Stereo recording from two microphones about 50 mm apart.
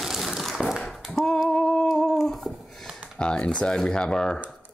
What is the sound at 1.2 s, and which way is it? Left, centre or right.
Humming, centre.